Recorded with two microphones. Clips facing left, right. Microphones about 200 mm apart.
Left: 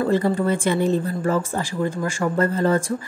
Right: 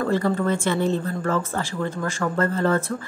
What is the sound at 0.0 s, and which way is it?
Speech, 15° left (ahead or behind).